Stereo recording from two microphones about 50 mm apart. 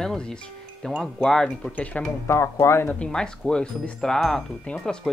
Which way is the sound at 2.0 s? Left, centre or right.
Left.